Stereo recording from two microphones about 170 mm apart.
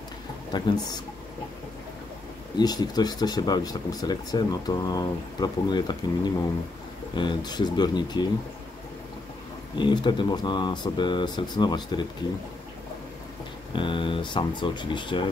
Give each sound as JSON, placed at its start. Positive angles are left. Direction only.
{"t": 0.5, "sound": "speech", "side_deg": 25}
{"t": 2.6, "sound": "speech", "side_deg": 25}
{"t": 9.8, "sound": "speech", "side_deg": 25}
{"t": 13.7, "sound": "speech", "side_deg": 30}